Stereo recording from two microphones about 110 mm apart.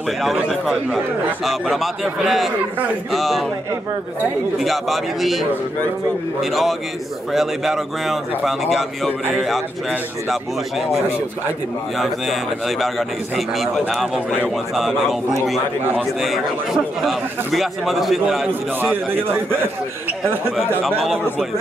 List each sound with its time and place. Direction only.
0.2 s a man's voice: centre (ahead or behind)
4.6 s a man's voice: centre (ahead or behind)
12.0 s a man's voice: centre (ahead or behind)
16.2 s a man's voice: centre (ahead or behind)
18.5 s a man's voice: 15° right (ahead or behind)
21.0 s a man's voice: centre (ahead or behind)